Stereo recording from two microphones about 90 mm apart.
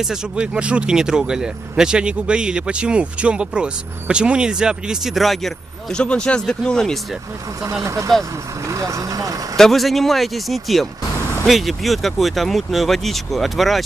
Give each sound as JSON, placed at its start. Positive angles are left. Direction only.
{"t": 0.0, "sound": "speech", "side_deg": -10}
{"t": 7.8, "sound": "speech", "side_deg": -35}
{"t": 9.6, "sound": "speech", "side_deg": 0}